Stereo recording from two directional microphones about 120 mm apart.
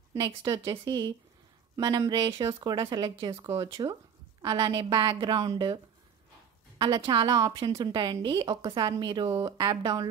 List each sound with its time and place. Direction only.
0.5 s a woman's voice: 30° right (ahead or behind)
6.8 s a woman's voice: 40° right (ahead or behind)